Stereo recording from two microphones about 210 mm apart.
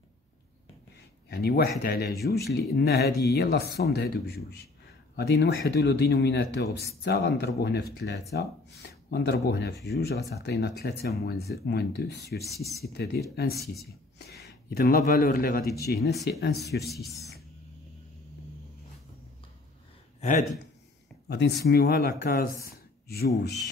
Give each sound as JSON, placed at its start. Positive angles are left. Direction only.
{"t": 1.3, "sound": "speech", "side_deg": 45}
{"t": 6.6, "sound": "speech", "side_deg": 15}
{"t": 7.0, "sound": "a man's voice", "side_deg": 55}
{"t": 20.2, "sound": "a sound", "side_deg": 35}
{"t": 21.3, "sound": "speech", "side_deg": 50}